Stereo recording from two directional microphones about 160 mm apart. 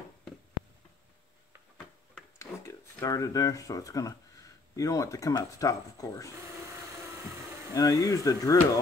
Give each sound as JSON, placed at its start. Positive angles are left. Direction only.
{"t": 2.3, "sound": "speech", "side_deg": 20}
{"t": 7.7, "sound": "speech", "side_deg": 20}